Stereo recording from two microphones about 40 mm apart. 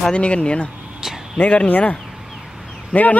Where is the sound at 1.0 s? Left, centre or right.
Centre.